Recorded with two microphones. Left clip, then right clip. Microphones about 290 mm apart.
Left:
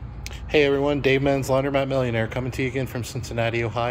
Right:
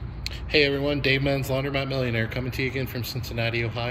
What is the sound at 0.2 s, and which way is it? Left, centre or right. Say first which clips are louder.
Speech: left 2 dB; centre.